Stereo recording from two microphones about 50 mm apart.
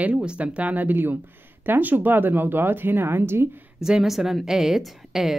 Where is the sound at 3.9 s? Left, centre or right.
Centre.